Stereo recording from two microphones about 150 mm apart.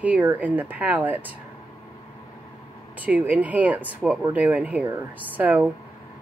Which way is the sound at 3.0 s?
10° right (ahead or behind).